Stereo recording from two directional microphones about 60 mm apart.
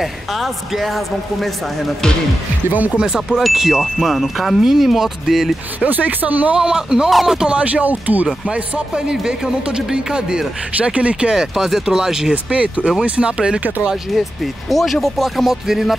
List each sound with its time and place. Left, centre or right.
0.0 s speech: centre
3.0 s speech: centre
5.9 s speech: right
6.5 s speech: centre
7.1 s speech: centre
7.3 s speech: centre
8.5 s speech: centre
11.5 s speech: centre
14.1 s speech: centre